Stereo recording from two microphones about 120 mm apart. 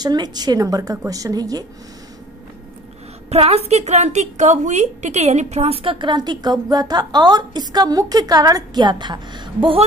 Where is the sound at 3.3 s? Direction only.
60° right (ahead or behind).